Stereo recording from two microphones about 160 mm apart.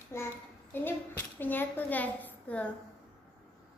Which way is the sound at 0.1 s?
15° left (ahead or behind).